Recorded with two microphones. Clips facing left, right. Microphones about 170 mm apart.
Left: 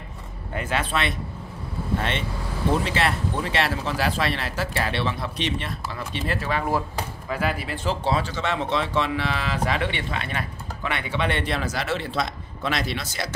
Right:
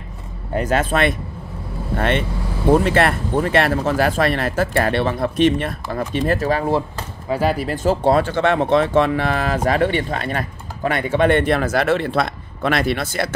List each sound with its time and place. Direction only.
0.6 s speech: 45° right (ahead or behind)